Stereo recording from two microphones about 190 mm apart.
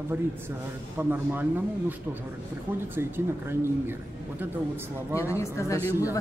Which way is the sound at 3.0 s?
10° right (ahead or behind).